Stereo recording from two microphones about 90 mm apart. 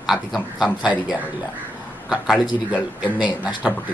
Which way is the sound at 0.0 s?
5° right (ahead or behind).